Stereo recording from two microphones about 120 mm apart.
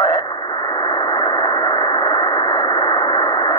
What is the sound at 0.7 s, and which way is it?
Radio, 40° left (ahead or behind).